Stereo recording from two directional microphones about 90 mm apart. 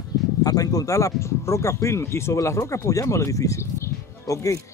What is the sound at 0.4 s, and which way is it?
Speech, 45° left (ahead or behind).